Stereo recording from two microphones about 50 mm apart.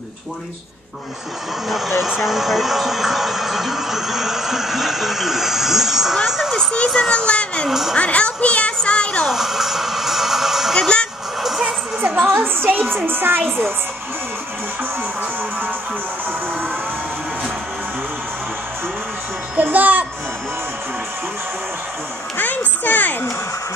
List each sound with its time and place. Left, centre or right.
1.7 s speech: centre
7.1 s speech: left
9.3 s music: centre
10.7 s speech: centre
12.0 s music: right
12.4 s a woman's voice: right
19.5 s music: right
22.4 s a sound: left